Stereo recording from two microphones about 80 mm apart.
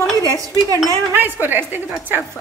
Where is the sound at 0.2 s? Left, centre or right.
Right.